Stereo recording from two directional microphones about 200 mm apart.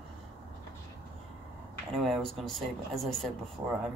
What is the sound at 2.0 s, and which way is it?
Speech, centre (ahead or behind).